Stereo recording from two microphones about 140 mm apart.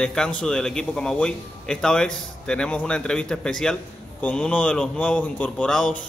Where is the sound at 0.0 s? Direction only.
5° left (ahead or behind).